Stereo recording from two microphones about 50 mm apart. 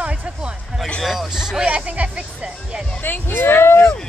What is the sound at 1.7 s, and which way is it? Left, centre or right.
Speech, right.